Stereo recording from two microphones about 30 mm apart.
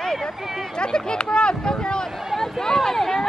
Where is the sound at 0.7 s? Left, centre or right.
Left.